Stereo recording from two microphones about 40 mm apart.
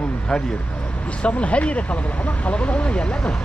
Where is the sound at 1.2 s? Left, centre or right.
Left.